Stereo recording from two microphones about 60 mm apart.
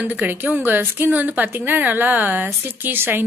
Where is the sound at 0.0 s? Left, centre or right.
Right.